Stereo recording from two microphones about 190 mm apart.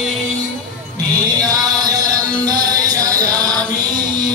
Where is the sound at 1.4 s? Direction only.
20° right (ahead or behind).